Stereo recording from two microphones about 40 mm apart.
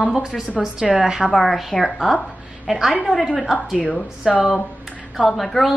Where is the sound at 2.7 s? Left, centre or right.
Centre.